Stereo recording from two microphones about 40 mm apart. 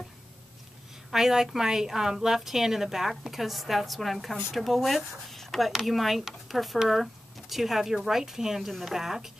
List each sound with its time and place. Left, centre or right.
1.1 s speech: centre